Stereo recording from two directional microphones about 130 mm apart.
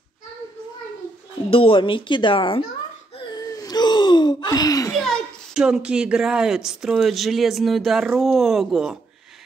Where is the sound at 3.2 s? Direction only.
30° left (ahead or behind).